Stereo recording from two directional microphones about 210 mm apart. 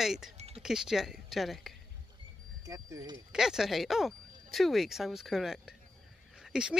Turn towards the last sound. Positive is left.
turn(degrees=-5)  # may be behind; listen again after turning